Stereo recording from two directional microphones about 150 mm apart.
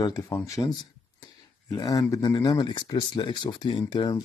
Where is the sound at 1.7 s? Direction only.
25° left (ahead or behind).